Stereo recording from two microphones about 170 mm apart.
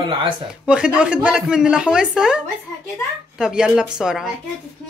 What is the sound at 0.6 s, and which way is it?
A woman's voice, 5° right (ahead or behind).